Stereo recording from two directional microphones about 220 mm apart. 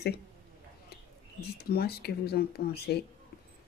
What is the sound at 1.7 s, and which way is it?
Speech, 45° left (ahead or behind).